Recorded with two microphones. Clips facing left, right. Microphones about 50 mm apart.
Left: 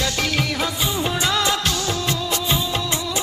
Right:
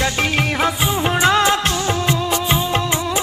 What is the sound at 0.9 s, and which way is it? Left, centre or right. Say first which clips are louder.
Music of bollywood: right 7 dB; right.